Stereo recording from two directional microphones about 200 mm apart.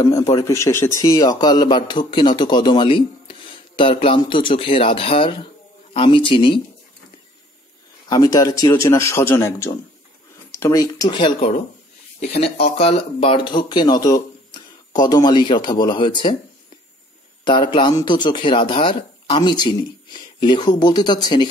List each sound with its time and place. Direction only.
0.0 s a man's voice: 15° left (ahead or behind)
8.1 s a man's voice: 20° left (ahead or behind)
17.5 s a man's voice: 25° left (ahead or behind)